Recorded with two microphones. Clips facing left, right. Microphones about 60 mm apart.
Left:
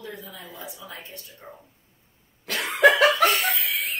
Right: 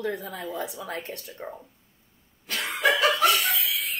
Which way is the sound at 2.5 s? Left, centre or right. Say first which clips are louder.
Left 6 dB; left.